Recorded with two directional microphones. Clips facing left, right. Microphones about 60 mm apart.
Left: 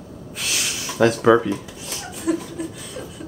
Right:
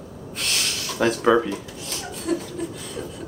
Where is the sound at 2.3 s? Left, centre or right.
Centre.